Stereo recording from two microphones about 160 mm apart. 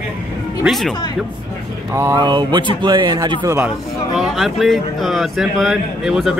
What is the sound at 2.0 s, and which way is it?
Speech, 25° right (ahead or behind).